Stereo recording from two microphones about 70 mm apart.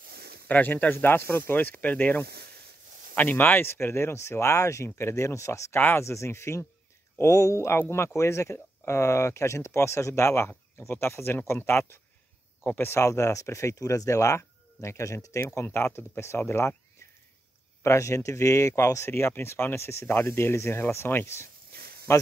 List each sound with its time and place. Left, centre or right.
0.5 s speech: left
5.8 s speech: left
6.0 s speech: left
17.8 s speech: left